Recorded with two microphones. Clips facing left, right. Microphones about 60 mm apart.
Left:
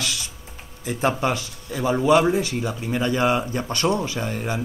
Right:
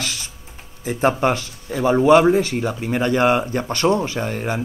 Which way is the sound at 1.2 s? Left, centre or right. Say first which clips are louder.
Right 4 dB; right.